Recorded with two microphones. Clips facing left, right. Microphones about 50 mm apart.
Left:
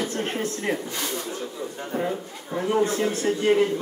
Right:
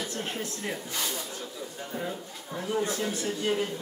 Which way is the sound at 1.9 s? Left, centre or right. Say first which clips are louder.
Left 8 dB; left.